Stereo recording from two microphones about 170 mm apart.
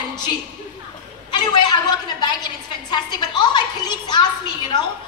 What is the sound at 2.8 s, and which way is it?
Music, 25° left (ahead or behind).